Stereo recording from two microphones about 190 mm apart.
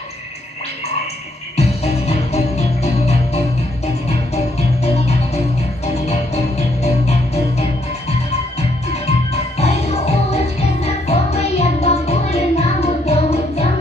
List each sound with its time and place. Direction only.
1.6 s music: 35° left (ahead or behind)
9.0 s music: 35° left (ahead or behind)